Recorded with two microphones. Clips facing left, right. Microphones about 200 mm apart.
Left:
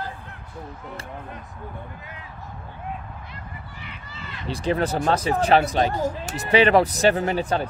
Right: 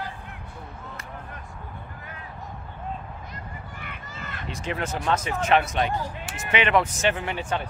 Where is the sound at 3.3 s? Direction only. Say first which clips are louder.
Right 1 dB; 55° right (ahead or behind).